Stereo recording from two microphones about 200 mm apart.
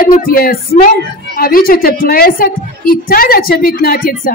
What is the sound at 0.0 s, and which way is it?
A woman's voice, 45° left (ahead or behind).